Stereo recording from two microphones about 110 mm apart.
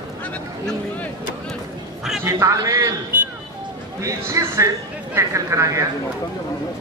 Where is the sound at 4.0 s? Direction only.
25° right (ahead or behind).